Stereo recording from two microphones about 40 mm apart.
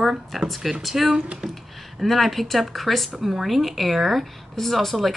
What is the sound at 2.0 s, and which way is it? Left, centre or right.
A woman's voice, centre.